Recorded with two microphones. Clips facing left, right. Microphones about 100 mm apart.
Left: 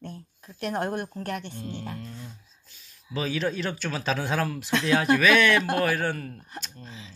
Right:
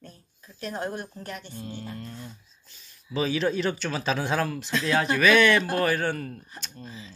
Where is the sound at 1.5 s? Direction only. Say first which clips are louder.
Left 1 dB; 10° right (ahead or behind).